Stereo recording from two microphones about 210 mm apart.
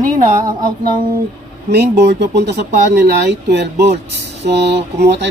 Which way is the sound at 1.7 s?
50° right (ahead or behind).